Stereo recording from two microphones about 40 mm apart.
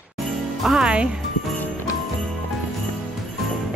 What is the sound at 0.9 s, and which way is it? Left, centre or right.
Speech, right.